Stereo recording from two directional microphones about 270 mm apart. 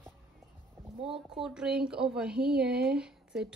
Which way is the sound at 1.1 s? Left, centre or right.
Centre.